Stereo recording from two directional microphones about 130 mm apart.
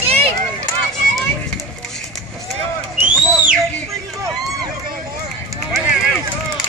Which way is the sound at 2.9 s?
10° right (ahead or behind).